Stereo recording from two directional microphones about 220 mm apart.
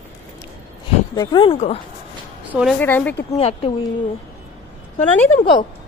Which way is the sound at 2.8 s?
10° left (ahead or behind).